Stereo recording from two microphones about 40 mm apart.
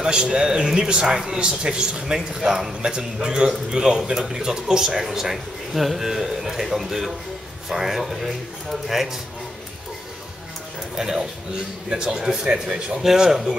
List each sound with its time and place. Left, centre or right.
0.0 s speech: centre
11.0 s speech: centre